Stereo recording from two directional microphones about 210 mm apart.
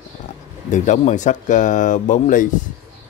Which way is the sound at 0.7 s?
35° left (ahead or behind).